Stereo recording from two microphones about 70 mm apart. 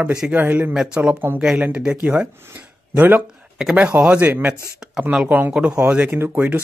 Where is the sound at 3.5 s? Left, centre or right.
Centre.